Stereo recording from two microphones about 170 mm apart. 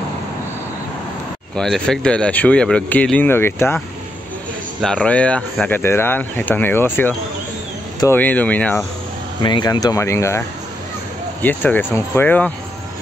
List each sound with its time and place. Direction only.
1.6 s speech: 5° left (ahead or behind)
4.8 s speech: 5° left (ahead or behind)
9.4 s speech: 25° left (ahead or behind)
11.4 s speech: 10° left (ahead or behind)